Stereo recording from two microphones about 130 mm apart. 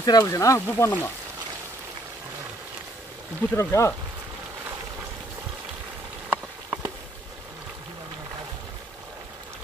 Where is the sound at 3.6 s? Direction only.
20° left (ahead or behind).